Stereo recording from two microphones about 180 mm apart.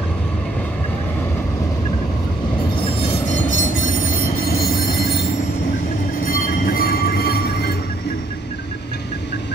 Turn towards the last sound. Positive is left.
turn(degrees=65)  # may be behind; listen again after turning